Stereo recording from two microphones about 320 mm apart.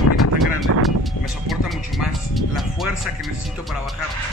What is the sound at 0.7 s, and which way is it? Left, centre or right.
Speech, right.